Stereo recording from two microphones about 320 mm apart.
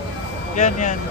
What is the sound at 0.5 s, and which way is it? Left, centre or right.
Speech, left.